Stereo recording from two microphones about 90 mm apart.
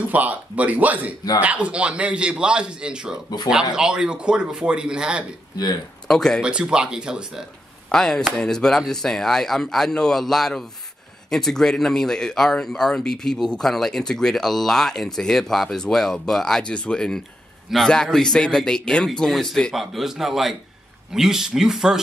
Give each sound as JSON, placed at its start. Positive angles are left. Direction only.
{"t": 0.1, "sound": "a man's voice", "side_deg": -15}
{"t": 6.0, "sound": "speech", "side_deg": 5}
{"t": 6.4, "sound": "a man's voice", "side_deg": -10}
{"t": 7.9, "sound": "speech", "side_deg": 5}